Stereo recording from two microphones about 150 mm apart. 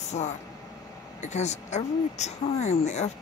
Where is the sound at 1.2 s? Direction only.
50° left (ahead or behind).